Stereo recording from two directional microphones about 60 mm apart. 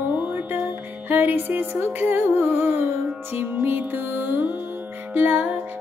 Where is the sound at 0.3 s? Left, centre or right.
Right.